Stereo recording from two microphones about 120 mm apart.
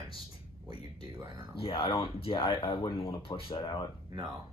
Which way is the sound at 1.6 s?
45° left (ahead or behind).